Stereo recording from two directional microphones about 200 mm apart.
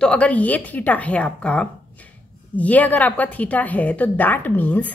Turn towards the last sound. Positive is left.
turn(degrees=10)  # may be behind; listen again after turning